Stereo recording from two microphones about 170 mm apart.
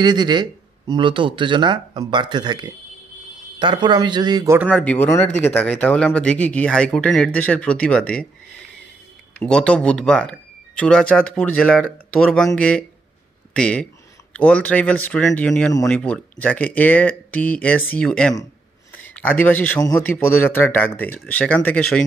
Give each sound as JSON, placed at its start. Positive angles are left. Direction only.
{"t": 0.0, "sound": "speech", "side_deg": -25}
{"t": 4.6, "sound": "speech", "side_deg": 10}